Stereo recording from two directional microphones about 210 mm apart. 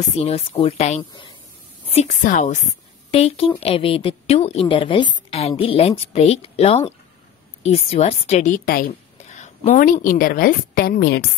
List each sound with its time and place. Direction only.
0.2 s a woman's voice: 30° left (ahead or behind)
9.3 s a woman's voice: 30° left (ahead or behind); by 11.2 s 50° left (ahead or behind)